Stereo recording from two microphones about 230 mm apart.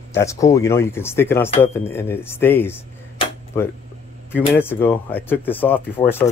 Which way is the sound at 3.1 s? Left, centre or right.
Centre.